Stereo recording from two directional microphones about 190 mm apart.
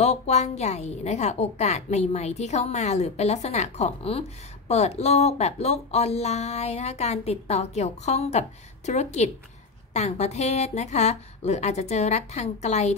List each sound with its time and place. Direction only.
0.0 s a woman's voice: 35° left (ahead or behind)